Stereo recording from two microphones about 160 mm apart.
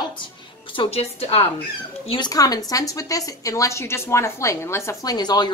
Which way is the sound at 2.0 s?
25° left (ahead or behind).